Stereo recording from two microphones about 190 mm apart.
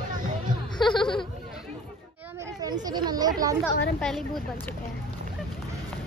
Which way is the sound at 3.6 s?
5° left (ahead or behind).